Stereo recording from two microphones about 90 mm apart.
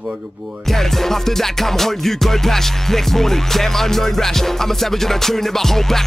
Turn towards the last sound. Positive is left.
turn(degrees=5)  # may be behind; listen again after turning